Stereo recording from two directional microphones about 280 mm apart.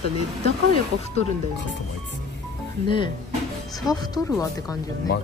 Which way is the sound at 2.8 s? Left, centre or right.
Centre.